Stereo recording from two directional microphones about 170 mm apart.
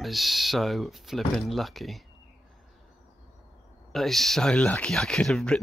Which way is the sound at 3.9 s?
Centre (ahead or behind).